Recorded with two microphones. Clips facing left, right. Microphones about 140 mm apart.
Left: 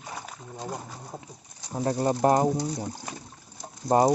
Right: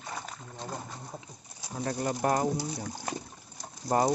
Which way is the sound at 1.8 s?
25° left (ahead or behind).